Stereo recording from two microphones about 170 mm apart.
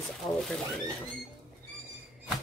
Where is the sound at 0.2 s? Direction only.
25° left (ahead or behind).